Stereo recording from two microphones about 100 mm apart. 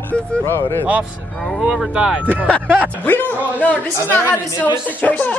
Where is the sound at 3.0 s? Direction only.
20° left (ahead or behind).